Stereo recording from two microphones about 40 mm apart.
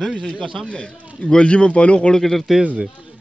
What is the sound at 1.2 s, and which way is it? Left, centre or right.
Speech, left.